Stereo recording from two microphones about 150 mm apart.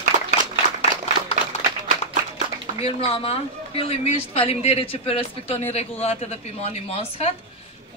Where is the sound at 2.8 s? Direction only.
45° left (ahead or behind).